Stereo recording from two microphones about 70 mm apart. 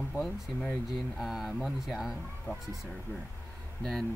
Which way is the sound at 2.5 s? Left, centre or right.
Left.